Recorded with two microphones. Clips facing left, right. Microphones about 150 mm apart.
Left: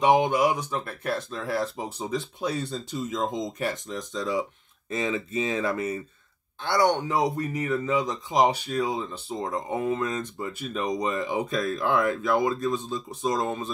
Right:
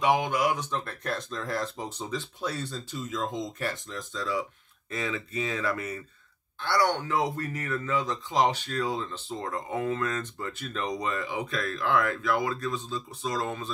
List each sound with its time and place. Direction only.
0.0 s speech: 25° left (ahead or behind)
0.6 s speech: 10° left (ahead or behind)